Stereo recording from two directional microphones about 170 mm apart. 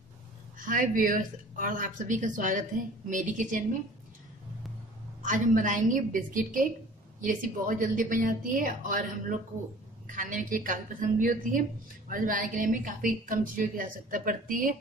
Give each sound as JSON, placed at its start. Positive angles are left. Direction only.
{"t": 0.6, "sound": "a woman's voice", "side_deg": -55}
{"t": 5.2, "sound": "a woman's voice", "side_deg": -50}